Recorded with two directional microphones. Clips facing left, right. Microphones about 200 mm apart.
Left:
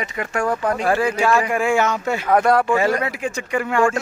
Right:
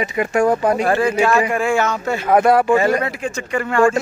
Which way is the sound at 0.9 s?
10° left (ahead or behind).